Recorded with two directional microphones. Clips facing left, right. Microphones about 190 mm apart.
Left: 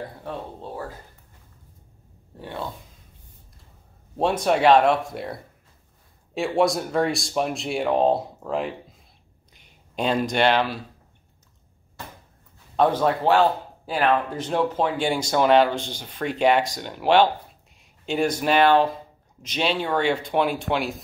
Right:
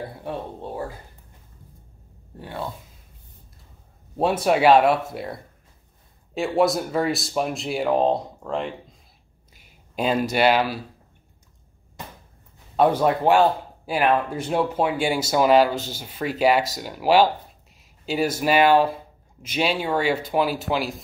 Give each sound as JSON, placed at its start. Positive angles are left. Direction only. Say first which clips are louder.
{"t": 0.2, "sound": "speech", "louder": "right 2 dB", "side_deg": -15}
{"t": 4.2, "sound": "speech", "louder": "right 1 dB", "side_deg": -5}
{"t": 12.0, "sound": "a sound", "louder": "right 1 dB", "side_deg": -20}
{"t": 12.7, "sound": "speech", "louder": "right 1 dB", "side_deg": -10}